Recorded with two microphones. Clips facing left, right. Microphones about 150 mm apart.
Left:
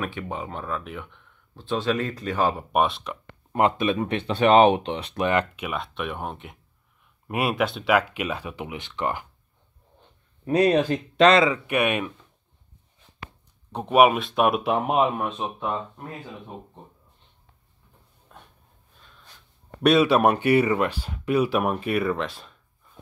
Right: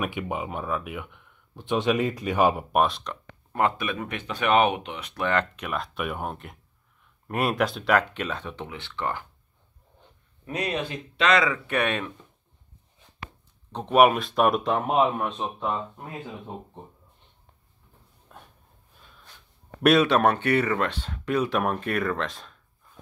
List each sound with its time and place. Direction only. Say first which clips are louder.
0.0 s speech: right 1 dB; 15° right (ahead or behind)
2.7 s speech: even; centre (ahead or behind)
3.5 s speech: left 4 dB; 20° left (ahead or behind)
5.2 s speech: left 2 dB; 10° left (ahead or behind)
10.4 s speech: left 10 dB; 35° left (ahead or behind); by 12.1 s 10° left (ahead or behind)
13.7 s speech: left 1 dB; 5° left (ahead or behind)
19.8 s speech: left 1 dB; centre (ahead or behind)